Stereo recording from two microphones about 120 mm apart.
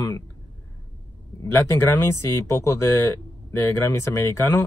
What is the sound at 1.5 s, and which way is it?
Speech, 20° left (ahead or behind).